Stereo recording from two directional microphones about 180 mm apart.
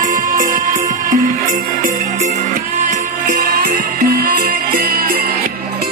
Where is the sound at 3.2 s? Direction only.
50° right (ahead or behind).